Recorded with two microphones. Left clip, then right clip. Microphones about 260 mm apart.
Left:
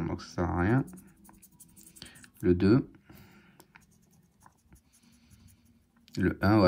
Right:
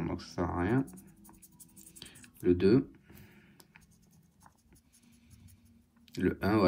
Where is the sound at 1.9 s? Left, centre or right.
Left.